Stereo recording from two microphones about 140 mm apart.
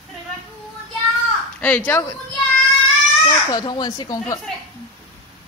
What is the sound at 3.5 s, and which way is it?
Speech, 30° left (ahead or behind).